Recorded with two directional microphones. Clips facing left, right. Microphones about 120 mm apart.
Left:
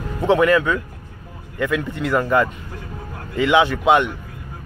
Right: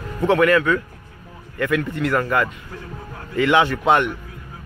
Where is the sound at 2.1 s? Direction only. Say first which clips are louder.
Left 4 dB; 15° left (ahead or behind).